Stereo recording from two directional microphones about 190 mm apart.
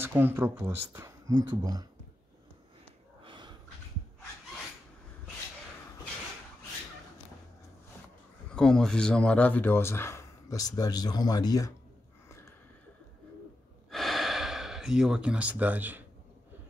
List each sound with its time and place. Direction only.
0.0 s speech: 10° right (ahead or behind)
3.3 s snort: 25° right (ahead or behind)
8.5 s speech: 5° left (ahead or behind); by 11.7 s 20° left (ahead or behind)
12.3 s a sound: 15° left (ahead or behind)
13.8 s gasp: centre (ahead or behind)